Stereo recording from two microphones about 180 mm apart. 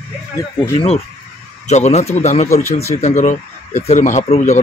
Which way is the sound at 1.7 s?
40° left (ahead or behind).